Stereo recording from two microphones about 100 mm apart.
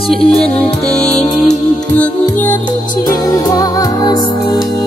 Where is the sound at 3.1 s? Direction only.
35° left (ahead or behind).